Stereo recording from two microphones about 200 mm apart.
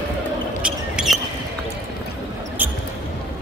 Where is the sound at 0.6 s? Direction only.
5° right (ahead or behind).